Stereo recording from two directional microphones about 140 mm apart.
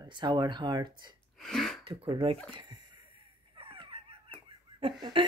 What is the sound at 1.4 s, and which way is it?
Sneeze, 5° left (ahead or behind).